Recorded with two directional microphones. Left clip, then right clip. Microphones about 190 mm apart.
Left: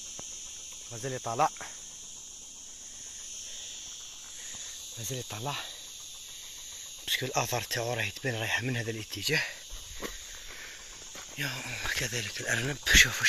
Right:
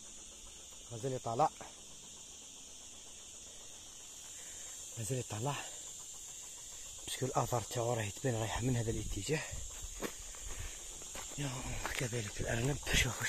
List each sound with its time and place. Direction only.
1.0 s speech: 20° left (ahead or behind)
5.1 s speech: 10° right (ahead or behind)
7.2 s speech: centre (ahead or behind)
11.3 s speech: 5° right (ahead or behind)